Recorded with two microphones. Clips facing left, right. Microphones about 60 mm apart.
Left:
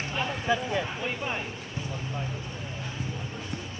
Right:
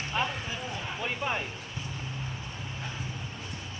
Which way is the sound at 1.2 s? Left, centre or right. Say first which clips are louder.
Right 1 dB; centre.